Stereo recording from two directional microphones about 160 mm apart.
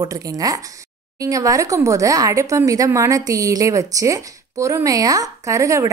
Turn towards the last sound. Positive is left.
turn(degrees=-20)  # may be behind; listen again after turning